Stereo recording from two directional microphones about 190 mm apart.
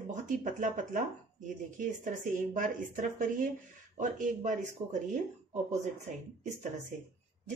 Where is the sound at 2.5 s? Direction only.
45° right (ahead or behind).